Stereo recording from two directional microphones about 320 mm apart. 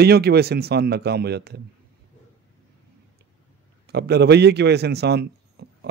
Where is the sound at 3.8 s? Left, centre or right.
Right.